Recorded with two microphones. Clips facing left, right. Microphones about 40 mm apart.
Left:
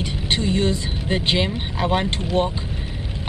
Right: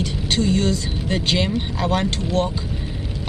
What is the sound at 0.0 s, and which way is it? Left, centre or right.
Speech, left.